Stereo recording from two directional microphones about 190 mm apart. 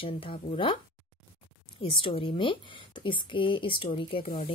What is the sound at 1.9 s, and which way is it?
Speech, 30° left (ahead or behind).